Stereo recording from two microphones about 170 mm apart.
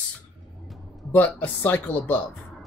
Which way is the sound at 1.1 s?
10° left (ahead or behind).